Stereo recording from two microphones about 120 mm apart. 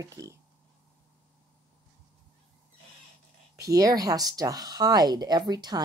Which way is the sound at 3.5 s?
30° right (ahead or behind).